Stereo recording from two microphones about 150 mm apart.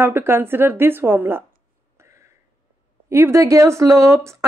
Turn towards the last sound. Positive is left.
turn(degrees=-20)  # may be behind; listen again after turning